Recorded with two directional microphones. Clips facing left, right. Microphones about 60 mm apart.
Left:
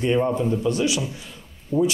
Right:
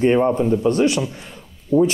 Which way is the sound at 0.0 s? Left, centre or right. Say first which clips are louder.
Right 5 dB; right.